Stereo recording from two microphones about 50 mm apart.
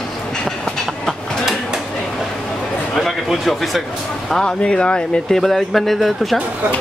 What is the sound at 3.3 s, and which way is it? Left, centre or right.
Speech, centre.